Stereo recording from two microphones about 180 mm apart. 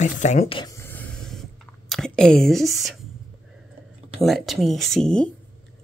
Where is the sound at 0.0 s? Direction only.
40° left (ahead or behind).